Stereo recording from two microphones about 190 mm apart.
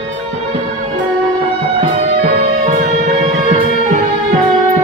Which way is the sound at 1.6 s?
30° right (ahead or behind).